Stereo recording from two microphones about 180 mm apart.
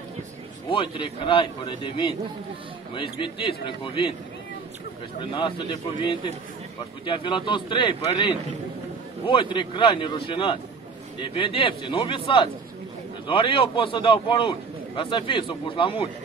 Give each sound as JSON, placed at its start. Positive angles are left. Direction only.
{"t": 0.7, "sound": "a man's voice", "side_deg": 30}
{"t": 5.2, "sound": "a man's voice", "side_deg": 25}
{"t": 9.3, "sound": "a man's voice", "side_deg": 30}